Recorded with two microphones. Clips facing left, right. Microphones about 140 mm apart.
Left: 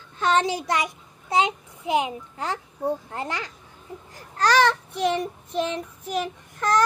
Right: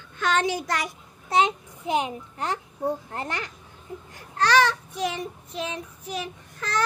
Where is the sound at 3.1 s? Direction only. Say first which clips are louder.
Left 1 dB; 25° left (ahead or behind).